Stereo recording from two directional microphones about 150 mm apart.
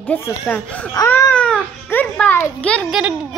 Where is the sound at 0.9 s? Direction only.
20° left (ahead or behind).